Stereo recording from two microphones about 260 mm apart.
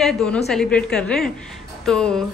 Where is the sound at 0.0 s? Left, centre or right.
Centre.